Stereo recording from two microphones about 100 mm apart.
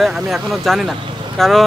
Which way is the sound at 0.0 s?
Centre (ahead or behind).